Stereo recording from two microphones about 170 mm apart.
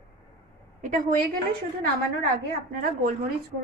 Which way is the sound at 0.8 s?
50° right (ahead or behind).